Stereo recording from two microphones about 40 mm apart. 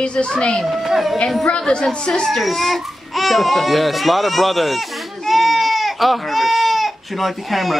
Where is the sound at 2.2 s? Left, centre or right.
Centre.